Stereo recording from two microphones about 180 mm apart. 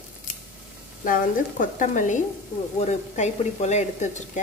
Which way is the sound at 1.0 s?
50° left (ahead or behind).